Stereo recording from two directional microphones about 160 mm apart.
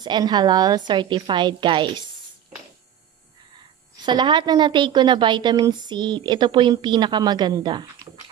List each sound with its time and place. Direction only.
0.0 s a woman's voice: 25° right (ahead or behind)
3.9 s a woman's voice: 30° right (ahead or behind)